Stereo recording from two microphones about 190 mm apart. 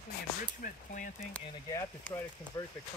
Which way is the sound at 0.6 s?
45° left (ahead or behind).